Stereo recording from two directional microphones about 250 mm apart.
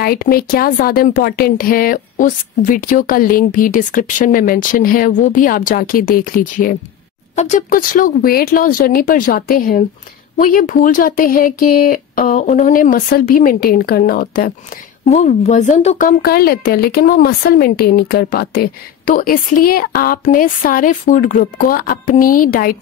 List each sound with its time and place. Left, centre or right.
0.0 s a woman's voice: left